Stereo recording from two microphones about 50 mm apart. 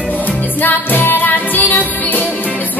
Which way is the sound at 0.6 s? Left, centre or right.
Left.